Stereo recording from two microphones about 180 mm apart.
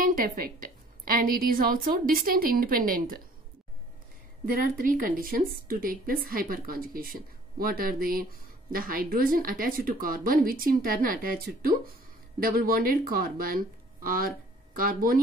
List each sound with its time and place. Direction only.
0.0 s a woman's voice: 50° right (ahead or behind)
4.5 s a woman's voice: 50° right (ahead or behind)